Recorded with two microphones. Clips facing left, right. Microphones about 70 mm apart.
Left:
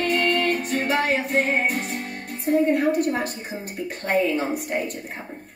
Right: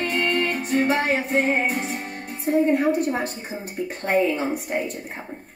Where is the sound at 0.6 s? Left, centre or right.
Right.